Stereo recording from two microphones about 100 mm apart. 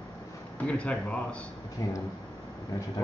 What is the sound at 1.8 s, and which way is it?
Speech, 30° left (ahead or behind).